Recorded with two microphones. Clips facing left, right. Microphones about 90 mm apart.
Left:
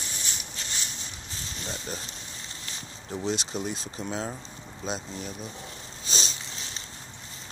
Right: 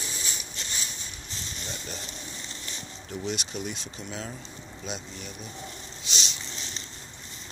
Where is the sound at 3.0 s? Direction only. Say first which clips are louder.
Left 3 dB; 30° left (ahead or behind).